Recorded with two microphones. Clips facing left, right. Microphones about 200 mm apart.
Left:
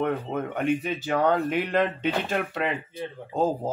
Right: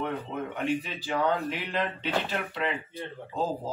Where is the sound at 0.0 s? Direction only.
50° left (ahead or behind).